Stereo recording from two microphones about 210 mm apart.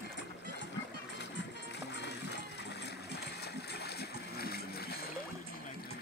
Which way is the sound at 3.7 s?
50° left (ahead or behind).